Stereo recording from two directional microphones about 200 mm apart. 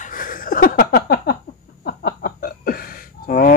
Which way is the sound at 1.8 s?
50° left (ahead or behind).